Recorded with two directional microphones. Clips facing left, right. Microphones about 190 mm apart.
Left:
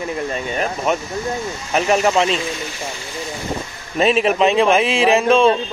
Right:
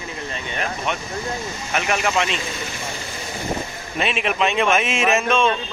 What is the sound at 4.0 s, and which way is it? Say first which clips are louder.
Speech: left 7 dB; 35° left (ahead or behind).